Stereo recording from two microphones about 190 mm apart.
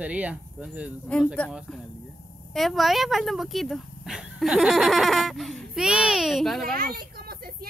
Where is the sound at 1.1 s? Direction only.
5° left (ahead or behind).